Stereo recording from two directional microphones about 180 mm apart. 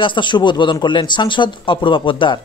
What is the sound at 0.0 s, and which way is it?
Speech, 25° left (ahead or behind).